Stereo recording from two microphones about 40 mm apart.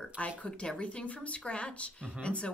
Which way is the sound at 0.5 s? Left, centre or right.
Left.